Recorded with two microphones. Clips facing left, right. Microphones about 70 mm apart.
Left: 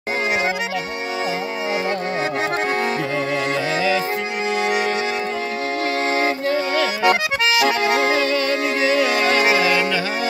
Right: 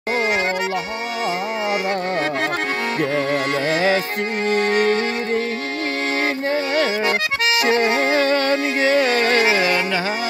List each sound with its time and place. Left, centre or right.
6.4 s music: right